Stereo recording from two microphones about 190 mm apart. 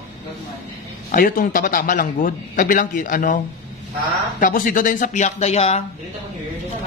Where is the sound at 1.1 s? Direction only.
50° left (ahead or behind).